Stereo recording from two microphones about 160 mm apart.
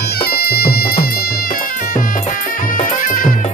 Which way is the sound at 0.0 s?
70° left (ahead or behind).